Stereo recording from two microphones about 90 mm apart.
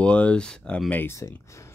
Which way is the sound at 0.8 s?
20° left (ahead or behind).